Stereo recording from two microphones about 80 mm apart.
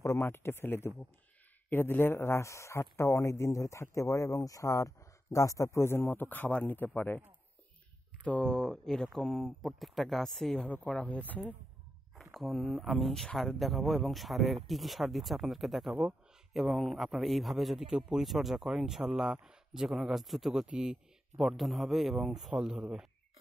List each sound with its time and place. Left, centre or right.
0.2 s speech: left
8.2 s a man's voice: centre
10.7 s speech: centre
12.2 s a man's voice: centre
15.9 s a man's voice: centre
16.5 s a man's voice: centre